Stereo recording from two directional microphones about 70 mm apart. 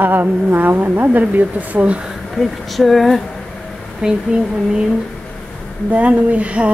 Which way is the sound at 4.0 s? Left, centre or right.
Centre.